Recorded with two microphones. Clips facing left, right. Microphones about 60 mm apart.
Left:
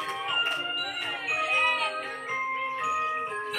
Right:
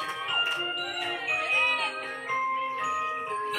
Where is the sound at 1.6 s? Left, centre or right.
Left.